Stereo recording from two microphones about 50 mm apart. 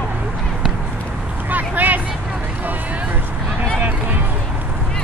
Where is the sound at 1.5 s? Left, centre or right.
Right.